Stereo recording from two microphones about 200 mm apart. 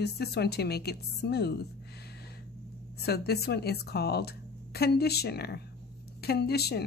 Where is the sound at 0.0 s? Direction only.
55° left (ahead or behind).